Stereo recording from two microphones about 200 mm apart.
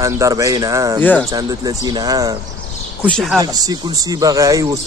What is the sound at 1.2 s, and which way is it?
Speech, 20° right (ahead or behind).